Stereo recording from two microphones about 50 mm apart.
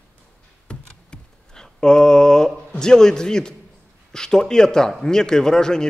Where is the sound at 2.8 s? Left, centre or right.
Centre.